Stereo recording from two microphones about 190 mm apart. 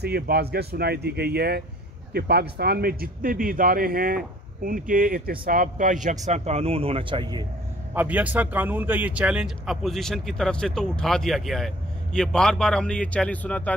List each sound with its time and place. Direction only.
0.0 s a man's voice: 60° right (ahead or behind); by 7.4 s 25° right (ahead or behind)
7.9 s speech: 10° right (ahead or behind); by 13.7 s 10° left (ahead or behind)